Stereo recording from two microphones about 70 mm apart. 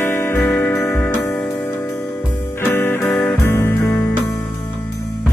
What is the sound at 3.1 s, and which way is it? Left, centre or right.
Music, left.